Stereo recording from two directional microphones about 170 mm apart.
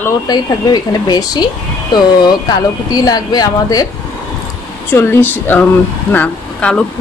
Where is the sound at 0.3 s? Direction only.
25° left (ahead or behind).